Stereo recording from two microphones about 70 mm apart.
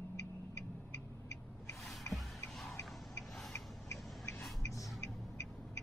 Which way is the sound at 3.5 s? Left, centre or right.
Left.